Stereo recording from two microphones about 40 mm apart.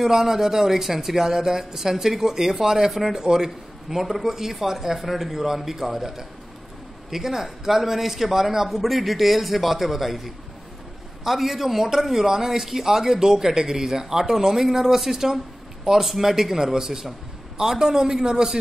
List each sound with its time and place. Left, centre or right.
0.0 s speech: centre